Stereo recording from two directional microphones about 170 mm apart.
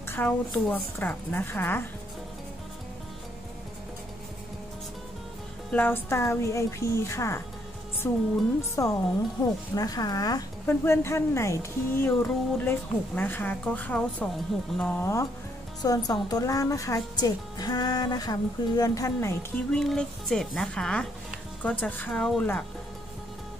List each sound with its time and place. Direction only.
0.0 s a sound: 15° left (ahead or behind)
0.5 s speech: 10° left (ahead or behind)
5.7 s a woman's voice: 10° left (ahead or behind)
19.7 s a woman's voice: 5° left (ahead or behind)